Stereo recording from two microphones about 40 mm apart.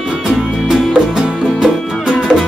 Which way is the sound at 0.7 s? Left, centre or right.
Centre.